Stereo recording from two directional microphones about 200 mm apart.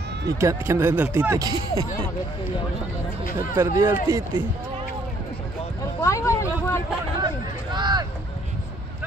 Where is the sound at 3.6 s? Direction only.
15° right (ahead or behind).